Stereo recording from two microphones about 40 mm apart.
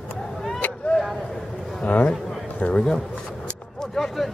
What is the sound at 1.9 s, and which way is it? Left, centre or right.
Speech, left.